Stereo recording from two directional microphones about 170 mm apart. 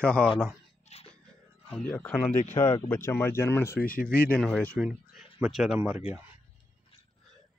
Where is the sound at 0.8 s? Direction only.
35° left (ahead or behind).